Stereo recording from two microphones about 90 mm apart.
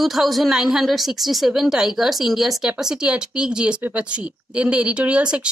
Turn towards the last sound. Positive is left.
turn(degrees=-15)  # may be behind; listen again after turning